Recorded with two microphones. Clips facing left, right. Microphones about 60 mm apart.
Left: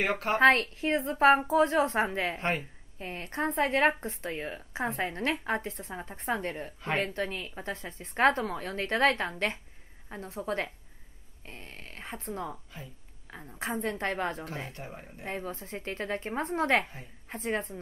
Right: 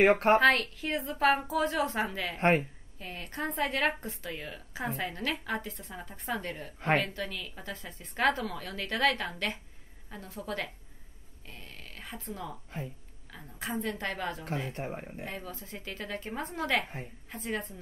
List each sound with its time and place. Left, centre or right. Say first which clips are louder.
0.0 s a woman's voice: right 7 dB; right
0.4 s a woman's voice: left 2 dB; left
11.4 s a sound: left 2 dB; left
13.3 s a woman's voice: left 3 dB; left
13.6 s a woman's voice: left 2 dB; left
14.7 s speech: right 6 dB; right
15.2 s a woman's voice: left 4 dB; left
16.8 s a woman's voice: right 4 dB; right
17.3 s a woman's voice: left 4 dB; left